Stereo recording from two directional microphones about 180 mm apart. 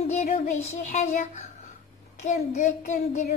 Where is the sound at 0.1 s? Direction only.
40° left (ahead or behind).